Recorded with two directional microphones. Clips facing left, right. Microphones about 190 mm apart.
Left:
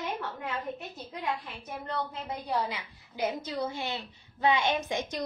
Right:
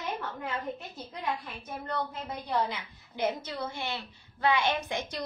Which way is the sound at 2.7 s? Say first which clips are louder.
Even; 10° left (ahead or behind).